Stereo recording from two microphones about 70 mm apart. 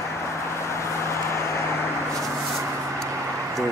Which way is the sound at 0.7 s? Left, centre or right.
Left.